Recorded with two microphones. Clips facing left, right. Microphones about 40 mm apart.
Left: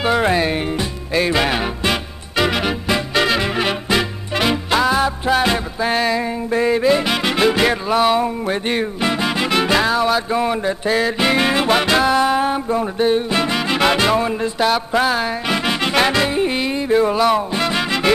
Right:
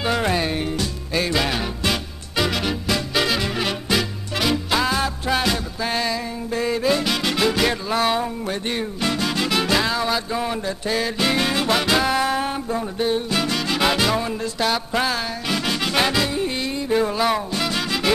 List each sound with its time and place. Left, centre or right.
0.0 s music: centre
17.2 s music: centre
17.6 s music: left